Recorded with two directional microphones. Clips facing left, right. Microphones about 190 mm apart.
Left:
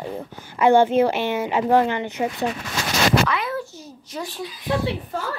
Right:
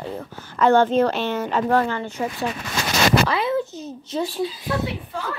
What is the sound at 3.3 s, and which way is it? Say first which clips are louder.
A child's voice: right 4 dB; 25° right (ahead or behind).